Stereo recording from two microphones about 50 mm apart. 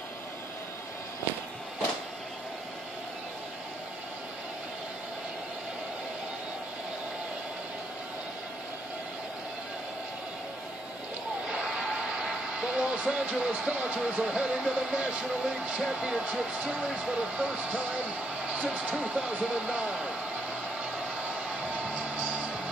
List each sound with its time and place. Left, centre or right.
11.4 s a sound: centre
12.2 s speech: centre
21.9 s music: right